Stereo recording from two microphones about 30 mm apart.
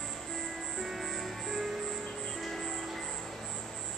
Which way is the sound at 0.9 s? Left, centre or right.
Centre.